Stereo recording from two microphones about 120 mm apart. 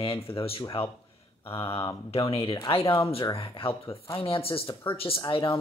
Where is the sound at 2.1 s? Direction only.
55° left (ahead or behind).